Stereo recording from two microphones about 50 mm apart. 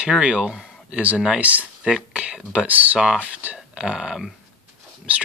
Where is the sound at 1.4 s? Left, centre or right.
Right.